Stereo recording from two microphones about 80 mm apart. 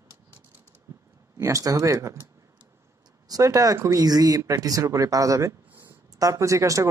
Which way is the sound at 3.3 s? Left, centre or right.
Right.